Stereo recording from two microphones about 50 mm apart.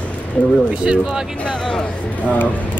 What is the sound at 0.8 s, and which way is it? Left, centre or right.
Speech, centre.